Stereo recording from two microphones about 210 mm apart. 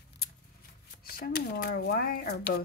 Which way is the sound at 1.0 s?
45° left (ahead or behind).